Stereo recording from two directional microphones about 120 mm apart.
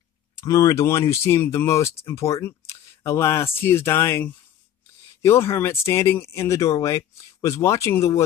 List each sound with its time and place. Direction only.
0.5 s speech: 30° left (ahead or behind)